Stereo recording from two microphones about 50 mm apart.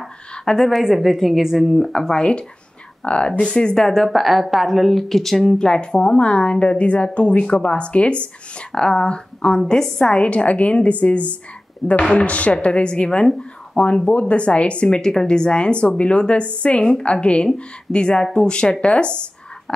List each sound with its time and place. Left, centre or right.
0.3 s a woman's voice: centre
0.7 s speech: centre
1.9 s a woman's voice: centre
4.1 s a woman's voice: centre
10.2 s a woman's voice: left